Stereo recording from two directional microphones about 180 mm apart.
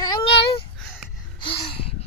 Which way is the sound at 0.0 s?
25° left (ahead or behind).